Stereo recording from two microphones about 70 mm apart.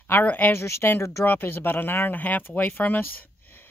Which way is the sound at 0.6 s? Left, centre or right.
Left.